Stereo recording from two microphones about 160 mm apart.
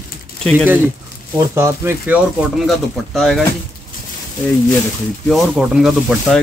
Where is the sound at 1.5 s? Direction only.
15° right (ahead or behind).